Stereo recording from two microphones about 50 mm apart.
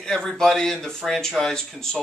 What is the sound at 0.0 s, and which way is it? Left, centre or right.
Speech, centre.